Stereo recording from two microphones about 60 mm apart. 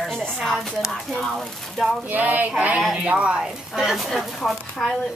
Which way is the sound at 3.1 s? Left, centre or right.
Centre.